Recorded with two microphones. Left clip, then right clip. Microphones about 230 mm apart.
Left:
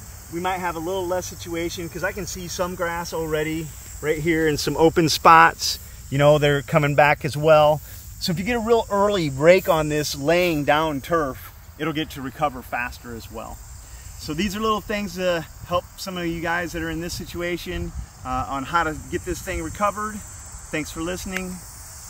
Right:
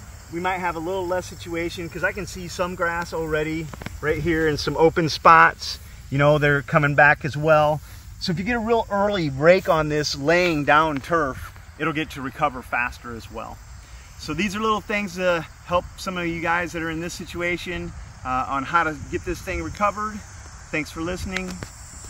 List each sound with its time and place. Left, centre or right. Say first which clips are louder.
0.4 s speech: right 1 dB; centre; by 5.8 s left
6.1 s speech: left 1 dB; centre